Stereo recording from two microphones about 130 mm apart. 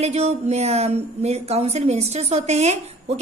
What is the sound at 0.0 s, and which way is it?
A woman's voice, 55° right (ahead or behind).